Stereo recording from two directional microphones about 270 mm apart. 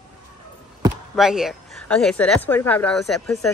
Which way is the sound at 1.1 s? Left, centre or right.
Centre.